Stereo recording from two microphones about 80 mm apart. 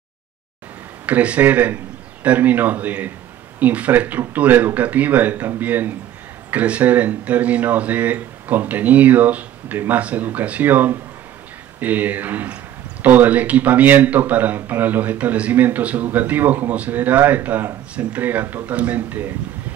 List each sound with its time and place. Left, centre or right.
1.0 s speech: centre